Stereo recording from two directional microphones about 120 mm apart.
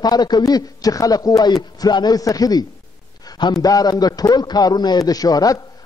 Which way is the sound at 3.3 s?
40° left (ahead or behind).